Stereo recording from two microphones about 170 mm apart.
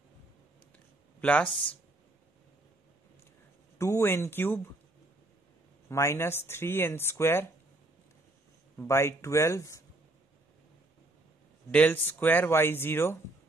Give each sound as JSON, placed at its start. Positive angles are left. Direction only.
{"t": 1.2, "sound": "speech", "side_deg": 10}
{"t": 3.7, "sound": "speech", "side_deg": 15}
{"t": 5.9, "sound": "speech", "side_deg": 15}
{"t": 8.7, "sound": "speech", "side_deg": 15}
{"t": 11.7, "sound": "speech", "side_deg": 10}